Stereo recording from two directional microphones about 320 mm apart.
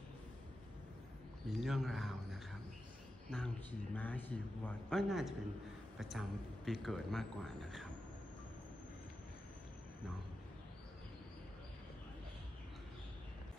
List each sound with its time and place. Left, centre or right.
1.5 s a man's voice: centre